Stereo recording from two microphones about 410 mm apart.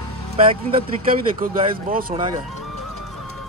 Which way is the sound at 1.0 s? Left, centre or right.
Right.